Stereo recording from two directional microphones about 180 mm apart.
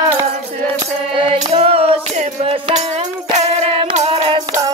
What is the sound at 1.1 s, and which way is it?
Music, 30° right (ahead or behind).